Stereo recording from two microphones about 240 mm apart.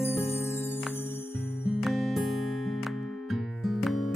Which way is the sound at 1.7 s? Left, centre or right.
Centre.